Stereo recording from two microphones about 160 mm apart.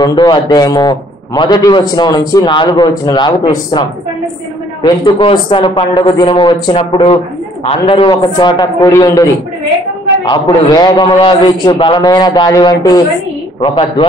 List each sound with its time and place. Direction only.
0.0 s a man's voice: 30° left (ahead or behind)